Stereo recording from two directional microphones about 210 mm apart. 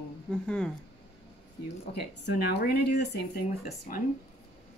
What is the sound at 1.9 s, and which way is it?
Speech, 50° left (ahead or behind).